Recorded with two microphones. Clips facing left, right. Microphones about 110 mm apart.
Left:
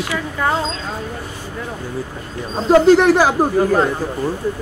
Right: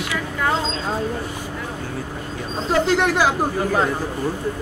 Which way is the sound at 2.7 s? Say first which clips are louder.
Left 8 dB; 45° left (ahead or behind).